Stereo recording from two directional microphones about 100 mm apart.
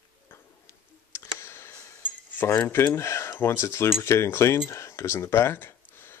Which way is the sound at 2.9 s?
30° left (ahead or behind).